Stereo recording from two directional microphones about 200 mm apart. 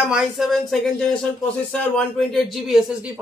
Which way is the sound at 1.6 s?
5° left (ahead or behind).